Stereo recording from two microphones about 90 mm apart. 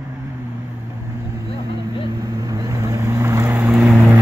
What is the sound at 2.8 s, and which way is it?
Vehicle, 30° right (ahead or behind).